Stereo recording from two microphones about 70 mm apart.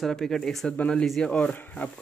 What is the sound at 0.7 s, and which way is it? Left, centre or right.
Speech, centre.